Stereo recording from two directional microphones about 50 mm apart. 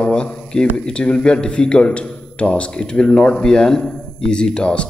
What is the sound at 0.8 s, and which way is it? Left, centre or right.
A man's voice, centre.